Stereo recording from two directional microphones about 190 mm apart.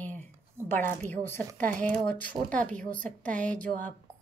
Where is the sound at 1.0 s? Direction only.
10° left (ahead or behind).